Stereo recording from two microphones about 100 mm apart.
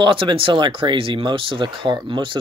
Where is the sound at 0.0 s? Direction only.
60° right (ahead or behind).